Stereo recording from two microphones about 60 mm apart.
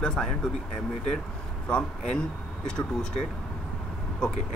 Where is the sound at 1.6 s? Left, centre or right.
Centre.